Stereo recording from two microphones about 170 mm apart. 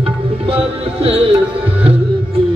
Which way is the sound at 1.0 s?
35° right (ahead or behind).